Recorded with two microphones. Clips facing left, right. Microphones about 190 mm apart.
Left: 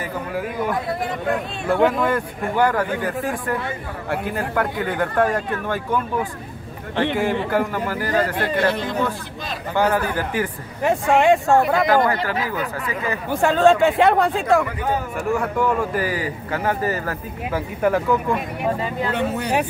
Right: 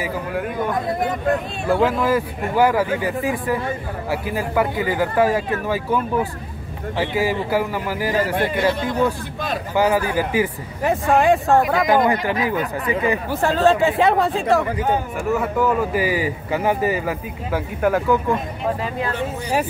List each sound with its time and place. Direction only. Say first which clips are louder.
0.0 s speech: right 2 dB; centre (ahead or behind)
1.7 s speech: even; centre (ahead or behind)
7.2 s a man's voice: right 3 dB; 5° right (ahead or behind)
9.8 s a man's voice: right 2 dB; 10° right (ahead or behind)
11.9 s a man's voice: right 1 dB; 15° right (ahead or behind)
13.3 s a man's voice: left 3 dB; centre (ahead or behind)
17.5 s speech: even; centre (ahead or behind)
19.1 s speech: left 3 dB; 65° left (ahead or behind)